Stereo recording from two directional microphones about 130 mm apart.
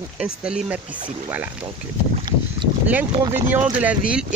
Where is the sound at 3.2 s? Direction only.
20° right (ahead or behind).